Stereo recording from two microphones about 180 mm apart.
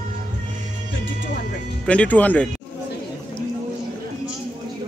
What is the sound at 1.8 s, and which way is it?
Speech, 5° left (ahead or behind).